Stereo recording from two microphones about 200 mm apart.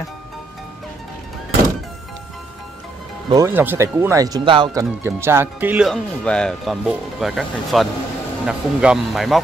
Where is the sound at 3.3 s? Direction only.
15° right (ahead or behind).